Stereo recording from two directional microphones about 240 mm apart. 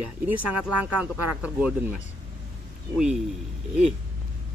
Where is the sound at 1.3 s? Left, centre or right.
Centre.